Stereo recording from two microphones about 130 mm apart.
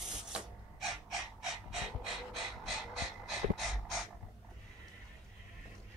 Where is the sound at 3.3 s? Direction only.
Centre (ahead or behind).